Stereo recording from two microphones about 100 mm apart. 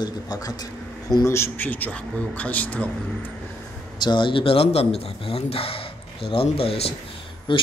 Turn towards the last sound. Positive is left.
turn(degrees=55)  # may be behind; listen again after turning